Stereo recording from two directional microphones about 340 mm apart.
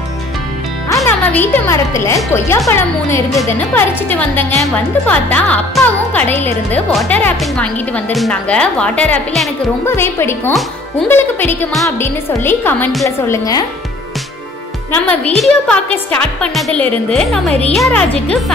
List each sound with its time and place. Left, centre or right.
0.8 s music: centre
2.0 s speech: centre
15.0 s speech: centre